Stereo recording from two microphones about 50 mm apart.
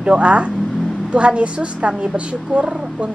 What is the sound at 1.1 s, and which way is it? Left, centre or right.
A woman's voice, right.